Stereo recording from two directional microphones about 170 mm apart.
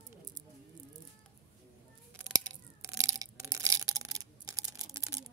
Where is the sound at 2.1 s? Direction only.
15° right (ahead or behind).